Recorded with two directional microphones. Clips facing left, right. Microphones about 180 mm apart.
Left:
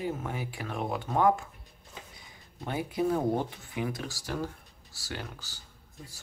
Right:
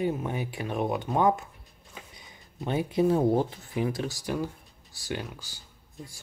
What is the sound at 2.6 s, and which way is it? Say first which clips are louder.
Speech: right 5 dB; 20° right (ahead or behind).